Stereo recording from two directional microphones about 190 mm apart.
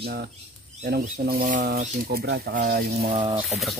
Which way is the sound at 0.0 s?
55° right (ahead or behind).